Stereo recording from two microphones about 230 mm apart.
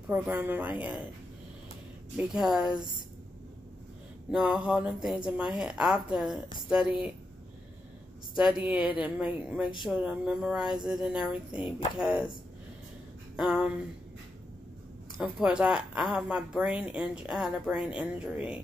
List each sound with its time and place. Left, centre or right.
0.1 s a woman's voice: centre
2.1 s speech: centre
4.3 s speech: centre
8.4 s speech: centre
13.4 s speech: centre
15.1 s speech: centre